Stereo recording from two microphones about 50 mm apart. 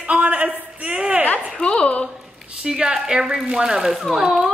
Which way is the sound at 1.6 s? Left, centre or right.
Left.